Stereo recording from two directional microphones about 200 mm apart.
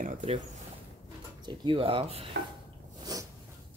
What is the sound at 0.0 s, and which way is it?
Speech, 40° right (ahead or behind).